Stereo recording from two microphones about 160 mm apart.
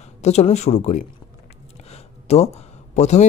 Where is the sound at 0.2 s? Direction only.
45° left (ahead or behind).